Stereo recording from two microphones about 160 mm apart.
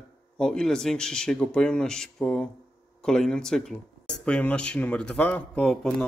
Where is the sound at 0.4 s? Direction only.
5° left (ahead or behind).